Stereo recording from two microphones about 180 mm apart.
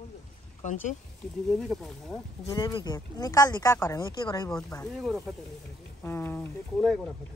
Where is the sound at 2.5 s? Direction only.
25° left (ahead or behind).